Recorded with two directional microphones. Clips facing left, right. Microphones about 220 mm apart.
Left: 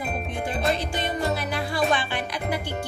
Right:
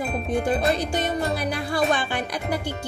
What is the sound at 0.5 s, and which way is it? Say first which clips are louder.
Music: right 1 dB; 45° right (ahead or behind).